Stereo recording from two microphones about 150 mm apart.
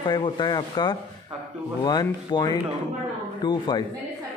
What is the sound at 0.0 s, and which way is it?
Speech, 30° left (ahead or behind).